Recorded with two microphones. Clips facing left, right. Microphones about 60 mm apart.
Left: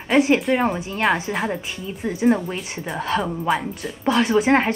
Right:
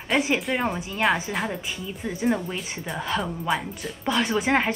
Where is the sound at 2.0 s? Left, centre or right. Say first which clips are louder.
Left 6 dB; centre.